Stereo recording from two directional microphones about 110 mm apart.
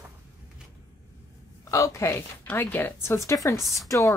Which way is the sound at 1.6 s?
30° left (ahead or behind).